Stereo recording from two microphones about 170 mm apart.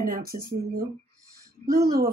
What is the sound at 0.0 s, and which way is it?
Speech, 60° right (ahead or behind).